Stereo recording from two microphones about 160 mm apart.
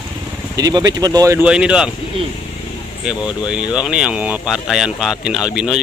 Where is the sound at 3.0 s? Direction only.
5° right (ahead or behind).